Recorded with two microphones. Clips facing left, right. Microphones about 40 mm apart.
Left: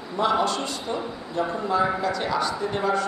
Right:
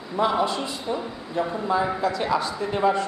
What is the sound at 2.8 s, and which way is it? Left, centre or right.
Speech, right.